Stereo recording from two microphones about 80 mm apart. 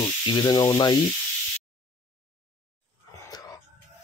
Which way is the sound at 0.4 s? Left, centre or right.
Left.